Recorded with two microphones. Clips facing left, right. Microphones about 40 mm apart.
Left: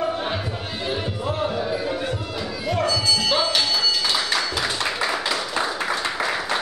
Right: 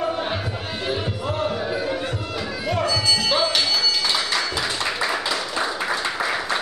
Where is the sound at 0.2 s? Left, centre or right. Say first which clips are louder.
Right 1 dB; centre.